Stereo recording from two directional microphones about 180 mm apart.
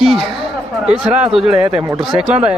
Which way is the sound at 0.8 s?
5° right (ahead or behind).